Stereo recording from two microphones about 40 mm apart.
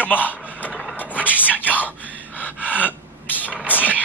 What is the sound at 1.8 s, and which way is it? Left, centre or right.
Gasp, left.